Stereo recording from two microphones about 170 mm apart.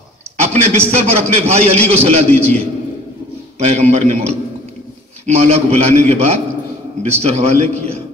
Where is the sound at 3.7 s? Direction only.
40° right (ahead or behind).